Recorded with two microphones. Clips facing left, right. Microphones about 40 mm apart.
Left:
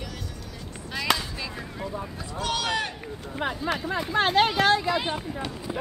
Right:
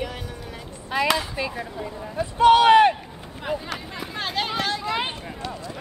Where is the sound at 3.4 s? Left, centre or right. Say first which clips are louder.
Right 1 dB; left.